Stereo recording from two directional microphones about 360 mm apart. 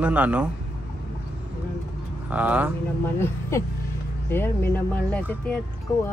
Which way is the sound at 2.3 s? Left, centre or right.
Centre.